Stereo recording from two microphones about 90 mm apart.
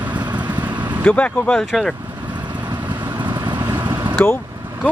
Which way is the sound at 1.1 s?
15° left (ahead or behind).